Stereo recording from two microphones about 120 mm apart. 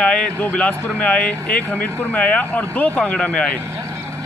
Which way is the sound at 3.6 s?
25° right (ahead or behind).